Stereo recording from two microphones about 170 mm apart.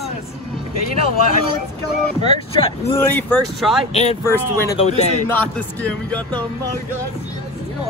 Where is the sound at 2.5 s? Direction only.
35° left (ahead or behind).